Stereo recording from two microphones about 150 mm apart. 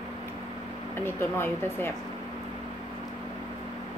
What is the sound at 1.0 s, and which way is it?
Speech, 15° left (ahead or behind).